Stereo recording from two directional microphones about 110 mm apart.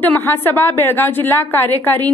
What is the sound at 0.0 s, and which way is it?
A woman's voice, 20° left (ahead or behind).